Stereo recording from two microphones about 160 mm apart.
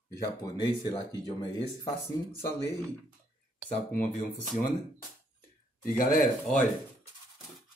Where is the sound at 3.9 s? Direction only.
55° left (ahead or behind).